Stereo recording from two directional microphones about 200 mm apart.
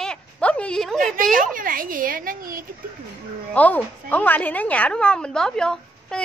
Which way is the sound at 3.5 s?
10° left (ahead or behind).